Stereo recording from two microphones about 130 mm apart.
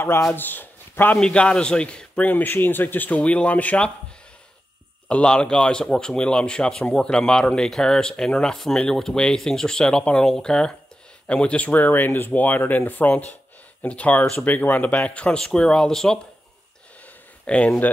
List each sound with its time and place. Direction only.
0.2 s a man's voice: 15° left (ahead or behind)
5.0 s a man's voice: 5° left (ahead or behind)
17.0 s a sound: 10° left (ahead or behind)